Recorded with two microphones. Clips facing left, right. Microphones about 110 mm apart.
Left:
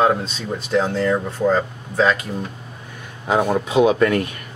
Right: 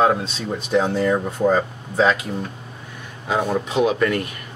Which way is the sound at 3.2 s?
15° left (ahead or behind).